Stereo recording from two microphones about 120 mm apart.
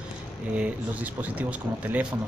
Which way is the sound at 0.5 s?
10° right (ahead or behind).